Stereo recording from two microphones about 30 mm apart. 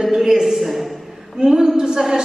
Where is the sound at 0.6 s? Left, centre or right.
Centre.